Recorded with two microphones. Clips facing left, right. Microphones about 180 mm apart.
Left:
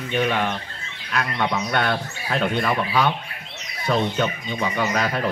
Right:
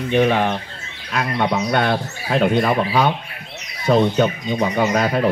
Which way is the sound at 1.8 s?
25° right (ahead or behind).